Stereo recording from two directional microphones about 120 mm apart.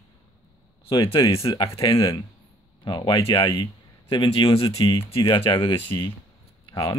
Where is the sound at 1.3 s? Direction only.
50° left (ahead or behind).